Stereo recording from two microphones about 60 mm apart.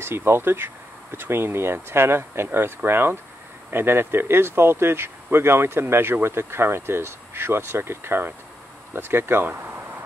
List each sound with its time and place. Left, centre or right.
0.0 s speech: right